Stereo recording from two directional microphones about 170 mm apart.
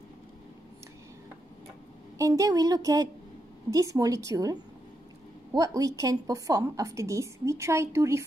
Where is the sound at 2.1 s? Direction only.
20° right (ahead or behind).